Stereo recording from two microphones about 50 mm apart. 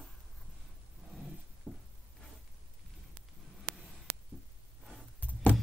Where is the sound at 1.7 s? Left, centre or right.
Right.